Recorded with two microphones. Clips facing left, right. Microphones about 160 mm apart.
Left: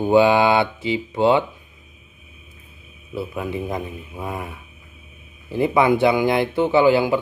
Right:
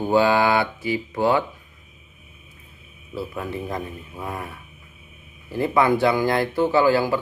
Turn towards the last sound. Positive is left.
turn(degrees=20)  # may be behind; listen again after turning